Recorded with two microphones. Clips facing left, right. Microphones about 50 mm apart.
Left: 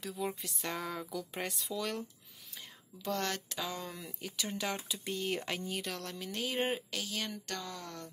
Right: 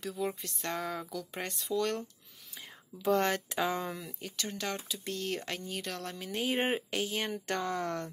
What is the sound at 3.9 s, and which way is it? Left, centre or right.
Speech, centre.